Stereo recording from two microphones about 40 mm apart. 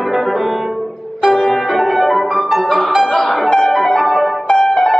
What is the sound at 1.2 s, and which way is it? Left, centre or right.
Music, centre.